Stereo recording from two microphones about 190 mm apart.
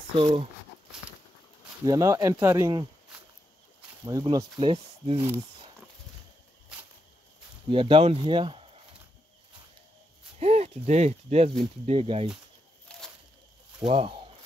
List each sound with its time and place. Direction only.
0.1 s speech: 30° right (ahead or behind)
1.9 s speech: 20° right (ahead or behind)
4.0 s speech: 20° right (ahead or behind)
7.6 s speech: 25° right (ahead or behind)
10.4 s speech: 35° right (ahead or behind)
12.9 s a sound: 5° left (ahead or behind)
13.8 s speech: 30° right (ahead or behind)